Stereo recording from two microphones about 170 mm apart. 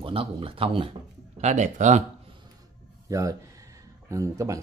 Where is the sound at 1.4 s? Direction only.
45° right (ahead or behind).